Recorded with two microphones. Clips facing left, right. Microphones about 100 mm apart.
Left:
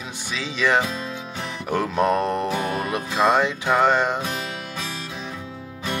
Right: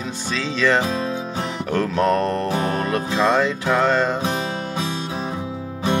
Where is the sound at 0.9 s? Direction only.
40° right (ahead or behind).